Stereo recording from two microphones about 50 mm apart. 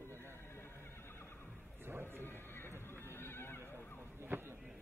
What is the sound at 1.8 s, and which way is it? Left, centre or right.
Speech, right.